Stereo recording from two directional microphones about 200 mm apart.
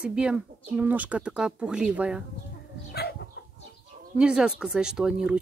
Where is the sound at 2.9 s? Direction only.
50° left (ahead or behind).